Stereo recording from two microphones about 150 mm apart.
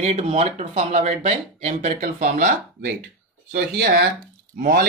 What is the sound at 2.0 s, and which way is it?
Speech, 60° right (ahead or behind).